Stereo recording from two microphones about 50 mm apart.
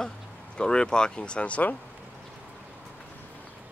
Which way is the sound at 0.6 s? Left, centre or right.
Centre.